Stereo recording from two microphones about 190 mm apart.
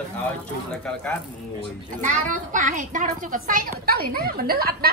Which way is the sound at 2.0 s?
40° right (ahead or behind).